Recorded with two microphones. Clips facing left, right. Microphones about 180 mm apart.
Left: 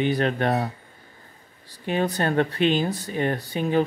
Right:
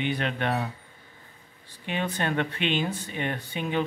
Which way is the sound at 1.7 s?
40° left (ahead or behind).